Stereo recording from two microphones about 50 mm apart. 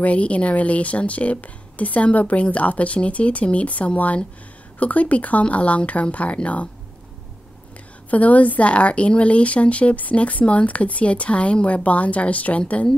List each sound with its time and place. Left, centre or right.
0.0 s speech: left
8.1 s speech: left